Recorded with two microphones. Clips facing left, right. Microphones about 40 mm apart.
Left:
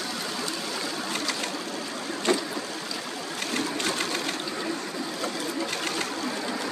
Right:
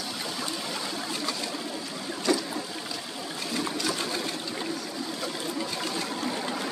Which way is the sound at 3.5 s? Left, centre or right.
Left.